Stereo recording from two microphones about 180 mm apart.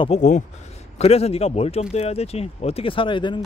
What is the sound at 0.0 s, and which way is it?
Speech, 40° left (ahead or behind).